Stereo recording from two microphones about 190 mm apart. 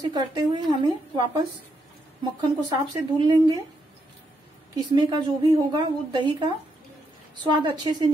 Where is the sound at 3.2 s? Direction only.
20° right (ahead or behind).